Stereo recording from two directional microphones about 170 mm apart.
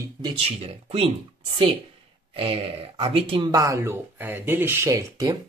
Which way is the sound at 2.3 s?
35° right (ahead or behind).